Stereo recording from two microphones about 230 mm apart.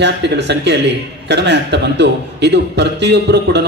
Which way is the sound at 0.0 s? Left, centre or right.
Right.